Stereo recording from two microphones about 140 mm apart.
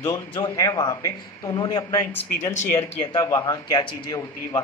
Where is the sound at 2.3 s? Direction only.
15° left (ahead or behind).